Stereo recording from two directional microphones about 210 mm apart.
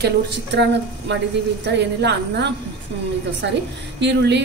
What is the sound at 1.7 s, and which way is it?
A woman's voice, 55° right (ahead or behind).